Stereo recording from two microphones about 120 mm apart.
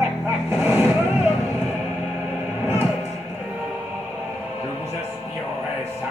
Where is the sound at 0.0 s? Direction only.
20° right (ahead or behind).